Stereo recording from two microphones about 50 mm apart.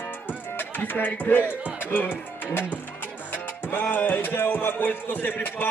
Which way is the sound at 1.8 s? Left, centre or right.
Left.